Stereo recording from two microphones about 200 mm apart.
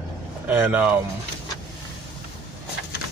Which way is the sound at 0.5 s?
10° right (ahead or behind).